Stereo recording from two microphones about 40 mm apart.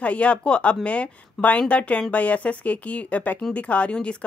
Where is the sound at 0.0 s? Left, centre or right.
Left.